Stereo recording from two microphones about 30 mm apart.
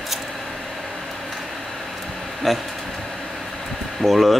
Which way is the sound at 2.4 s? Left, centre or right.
Centre.